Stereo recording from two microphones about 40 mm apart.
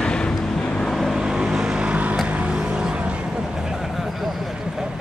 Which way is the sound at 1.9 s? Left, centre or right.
Right.